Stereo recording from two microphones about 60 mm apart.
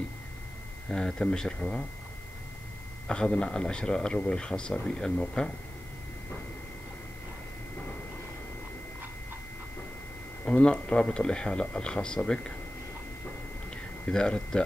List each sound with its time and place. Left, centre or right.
0.8 s a man's voice: centre
3.1 s a man's voice: centre
10.4 s a man's voice: centre
14.0 s a man's voice: centre